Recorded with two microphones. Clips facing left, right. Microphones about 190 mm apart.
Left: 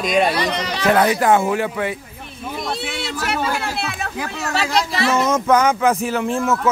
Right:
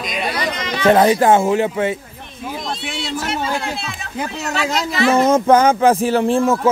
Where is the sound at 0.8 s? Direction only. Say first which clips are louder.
Right 4 dB; 30° right (ahead or behind).